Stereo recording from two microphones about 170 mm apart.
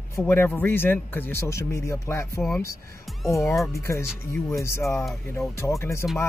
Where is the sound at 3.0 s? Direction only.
Centre (ahead or behind).